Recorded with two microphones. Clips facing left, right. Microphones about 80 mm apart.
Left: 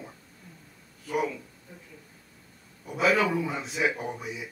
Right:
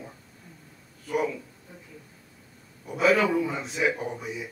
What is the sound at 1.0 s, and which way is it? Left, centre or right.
Speech, centre.